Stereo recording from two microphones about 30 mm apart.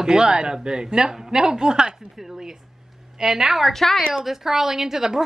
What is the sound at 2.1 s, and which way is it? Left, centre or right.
Speech, centre.